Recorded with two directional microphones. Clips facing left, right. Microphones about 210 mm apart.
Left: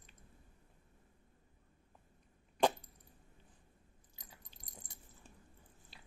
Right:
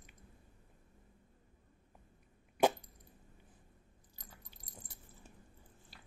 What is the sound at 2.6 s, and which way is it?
Dog, 10° right (ahead or behind).